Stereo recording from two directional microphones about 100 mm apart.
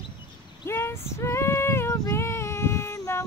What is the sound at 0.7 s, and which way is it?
Female singing, 25° left (ahead or behind).